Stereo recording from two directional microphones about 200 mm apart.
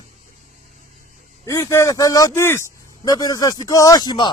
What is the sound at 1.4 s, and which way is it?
Speech, 15° left (ahead or behind).